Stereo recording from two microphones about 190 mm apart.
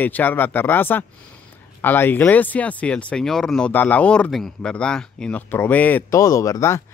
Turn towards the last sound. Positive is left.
turn(degrees=15)  # may be behind; listen again after turning